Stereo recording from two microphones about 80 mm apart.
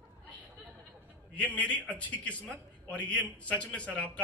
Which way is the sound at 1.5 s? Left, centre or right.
Centre.